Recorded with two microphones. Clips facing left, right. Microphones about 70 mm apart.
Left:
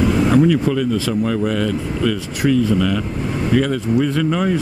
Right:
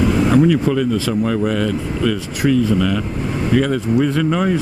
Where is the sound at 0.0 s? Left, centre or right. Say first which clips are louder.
Even; right.